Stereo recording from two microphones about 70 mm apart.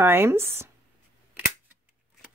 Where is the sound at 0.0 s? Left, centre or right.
Right.